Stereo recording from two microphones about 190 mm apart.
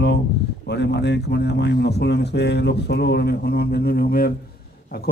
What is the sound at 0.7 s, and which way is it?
Speech, 65° left (ahead or behind).